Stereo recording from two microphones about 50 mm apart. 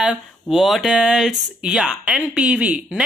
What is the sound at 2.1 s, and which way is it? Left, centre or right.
Speech, right.